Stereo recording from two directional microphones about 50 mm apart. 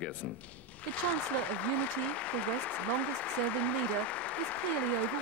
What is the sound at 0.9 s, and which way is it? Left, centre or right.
Speech, left.